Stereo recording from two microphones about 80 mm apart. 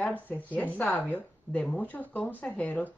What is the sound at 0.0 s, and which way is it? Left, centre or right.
A woman's voice, left.